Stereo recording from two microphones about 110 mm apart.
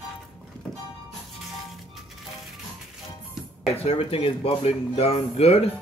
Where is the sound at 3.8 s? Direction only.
60° left (ahead or behind).